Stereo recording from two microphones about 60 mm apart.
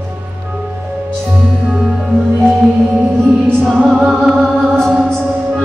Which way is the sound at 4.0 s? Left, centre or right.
Centre.